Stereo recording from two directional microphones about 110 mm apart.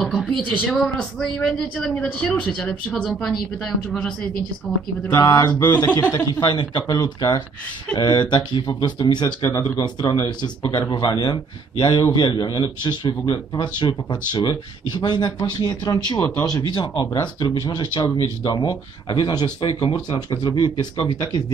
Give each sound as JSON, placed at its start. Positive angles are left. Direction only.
{"t": 0.0, "sound": "a sound", "side_deg": 5}
{"t": 0.5, "sound": "speech", "side_deg": 10}
{"t": 5.1, "sound": "speech", "side_deg": 30}